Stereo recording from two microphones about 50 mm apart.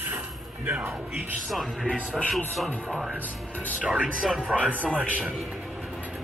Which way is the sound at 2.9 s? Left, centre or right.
Centre.